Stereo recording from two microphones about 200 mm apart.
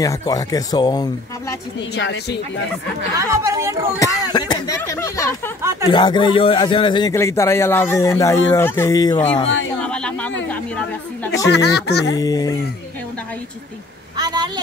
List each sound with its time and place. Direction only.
0.0 s a man's voice: 15° left (ahead or behind)
2.0 s speech: 65° left (ahead or behind)
3.2 s speech: 15° right (ahead or behind)
4.0 s speech: 15° left (ahead or behind)
5.6 s speech: 15° right (ahead or behind)
5.9 s a man's voice: 20° left (ahead or behind)
9.8 s a sound: 5° left (ahead or behind)
11.5 s speech: 55° left (ahead or behind)
12.2 s a man's voice: 20° left (ahead or behind)
14.1 s a woman's voice: 20° right (ahead or behind)